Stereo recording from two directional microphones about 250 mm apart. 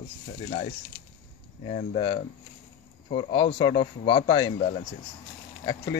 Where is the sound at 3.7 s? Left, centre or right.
Left.